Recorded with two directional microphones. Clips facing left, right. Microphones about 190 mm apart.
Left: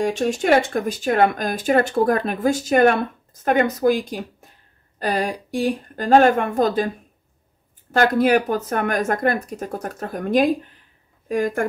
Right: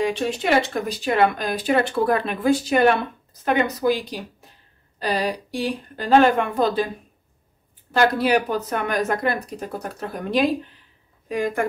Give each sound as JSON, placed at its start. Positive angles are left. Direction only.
{"t": 0.0, "sound": "speech", "side_deg": 45}
{"t": 7.9, "sound": "speech", "side_deg": 50}